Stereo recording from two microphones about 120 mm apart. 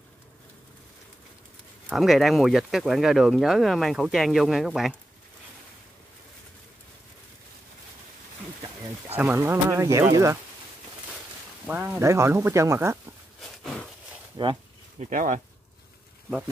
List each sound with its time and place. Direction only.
1.9 s speech: centre (ahead or behind)
9.3 s speech: 20° right (ahead or behind)
11.6 s speech: 15° right (ahead or behind)
14.4 s speech: 35° right (ahead or behind)
15.0 s speech: 90° right